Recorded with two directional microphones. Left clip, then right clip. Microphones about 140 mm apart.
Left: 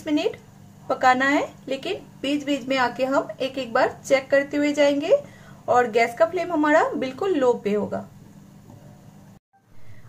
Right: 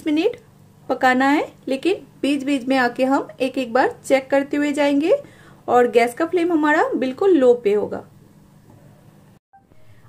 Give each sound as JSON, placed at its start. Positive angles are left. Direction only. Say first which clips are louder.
{"t": 0.0, "sound": "a woman's voice", "louder": "right 4 dB", "side_deg": -65}